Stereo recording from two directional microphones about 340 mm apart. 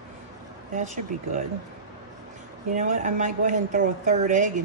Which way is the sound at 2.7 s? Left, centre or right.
Right.